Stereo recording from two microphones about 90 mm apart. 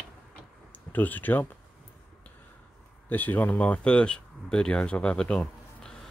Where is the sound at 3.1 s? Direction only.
20° left (ahead or behind).